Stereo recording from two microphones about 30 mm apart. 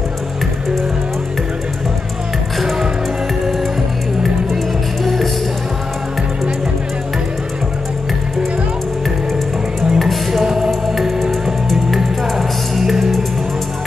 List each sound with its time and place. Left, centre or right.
5.0 s music: centre
9.9 s music: centre